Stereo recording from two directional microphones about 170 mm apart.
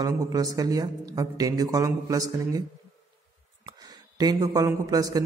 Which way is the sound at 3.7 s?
20° right (ahead or behind).